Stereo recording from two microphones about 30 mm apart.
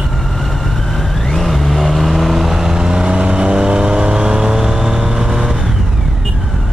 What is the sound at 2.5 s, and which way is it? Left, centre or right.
Vehicle, centre.